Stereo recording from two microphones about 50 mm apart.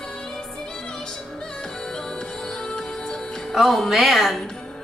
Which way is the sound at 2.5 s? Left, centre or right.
Centre.